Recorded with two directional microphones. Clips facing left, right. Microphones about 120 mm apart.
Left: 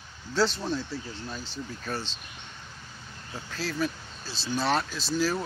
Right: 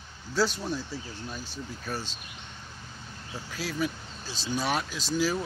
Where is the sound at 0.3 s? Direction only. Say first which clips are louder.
Left 1 dB; 10° right (ahead or behind).